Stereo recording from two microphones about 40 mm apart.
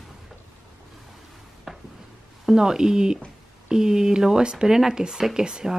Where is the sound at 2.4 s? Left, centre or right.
Centre.